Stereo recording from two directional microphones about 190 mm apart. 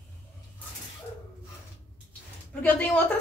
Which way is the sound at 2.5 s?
10° left (ahead or behind).